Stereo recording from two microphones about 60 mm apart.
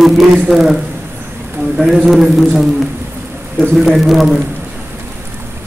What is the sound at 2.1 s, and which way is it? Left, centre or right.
Speech, centre.